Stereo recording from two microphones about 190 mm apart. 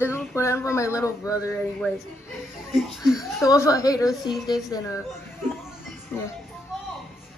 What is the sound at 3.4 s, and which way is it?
A woman's voice, 20° left (ahead or behind).